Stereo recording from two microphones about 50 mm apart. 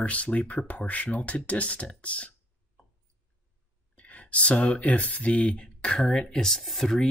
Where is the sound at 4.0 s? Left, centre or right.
Left.